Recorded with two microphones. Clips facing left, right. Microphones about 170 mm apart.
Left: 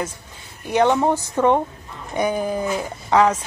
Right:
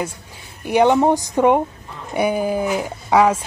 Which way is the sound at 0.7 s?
15° right (ahead or behind).